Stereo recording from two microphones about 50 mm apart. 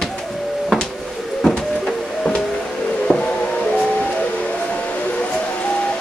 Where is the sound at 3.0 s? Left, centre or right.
Left.